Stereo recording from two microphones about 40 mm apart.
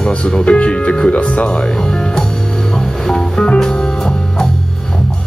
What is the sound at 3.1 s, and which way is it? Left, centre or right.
Music, centre.